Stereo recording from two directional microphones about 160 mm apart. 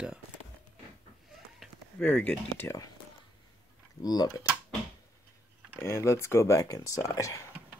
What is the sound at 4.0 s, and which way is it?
Speech, 25° left (ahead or behind).